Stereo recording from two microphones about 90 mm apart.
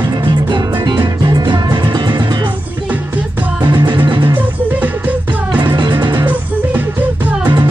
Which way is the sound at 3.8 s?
60° right (ahead or behind).